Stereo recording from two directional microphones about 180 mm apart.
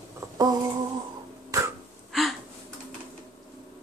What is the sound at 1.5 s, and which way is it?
Throat clearing, 15° right (ahead or behind).